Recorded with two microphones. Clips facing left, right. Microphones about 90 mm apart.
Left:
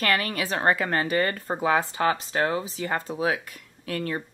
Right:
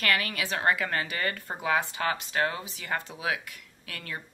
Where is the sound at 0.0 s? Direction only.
40° left (ahead or behind).